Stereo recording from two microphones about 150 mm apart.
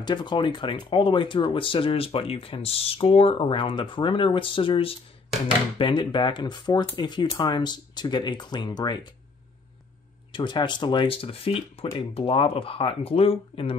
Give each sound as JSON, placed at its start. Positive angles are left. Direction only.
{"t": 0.0, "sound": "speech", "side_deg": 30}
{"t": 10.3, "sound": "speech", "side_deg": 30}